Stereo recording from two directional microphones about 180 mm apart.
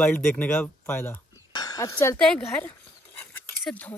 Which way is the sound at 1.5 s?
20° left (ahead or behind).